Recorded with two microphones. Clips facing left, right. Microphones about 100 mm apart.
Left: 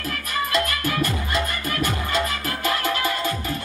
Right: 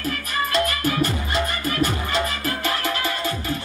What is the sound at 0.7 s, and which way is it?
Music, 30° right (ahead or behind).